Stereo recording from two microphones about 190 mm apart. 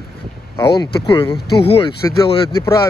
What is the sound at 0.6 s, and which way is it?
Speech, 25° left (ahead or behind).